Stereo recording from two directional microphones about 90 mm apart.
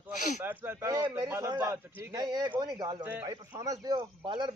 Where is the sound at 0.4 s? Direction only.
35° right (ahead or behind).